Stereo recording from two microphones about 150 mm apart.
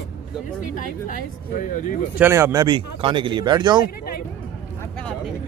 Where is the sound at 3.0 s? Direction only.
35° right (ahead or behind).